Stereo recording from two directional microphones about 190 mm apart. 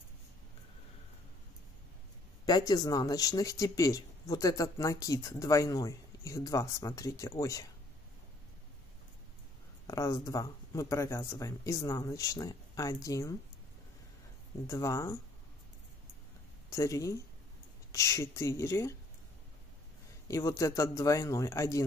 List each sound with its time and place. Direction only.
2.4 s speech: 20° left (ahead or behind)
9.8 s speech: 20° left (ahead or behind)
14.7 s speech: 15° left (ahead or behind)
16.7 s speech: 15° left (ahead or behind)
20.2 s speech: 15° left (ahead or behind)